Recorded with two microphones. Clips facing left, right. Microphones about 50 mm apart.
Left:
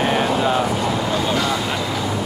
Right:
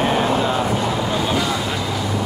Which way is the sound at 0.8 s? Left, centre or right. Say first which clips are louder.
Even; centre.